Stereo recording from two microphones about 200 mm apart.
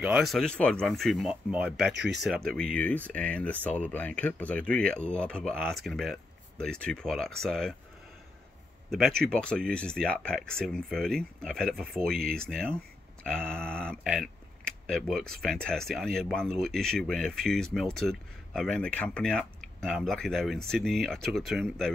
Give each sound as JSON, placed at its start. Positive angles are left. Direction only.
{"t": 0.0, "sound": "speech", "side_deg": 0}
{"t": 2.0, "sound": "speech", "side_deg": -55}
{"t": 2.2, "sound": "speech", "side_deg": 0}
{"t": 9.3, "sound": "speech", "side_deg": 5}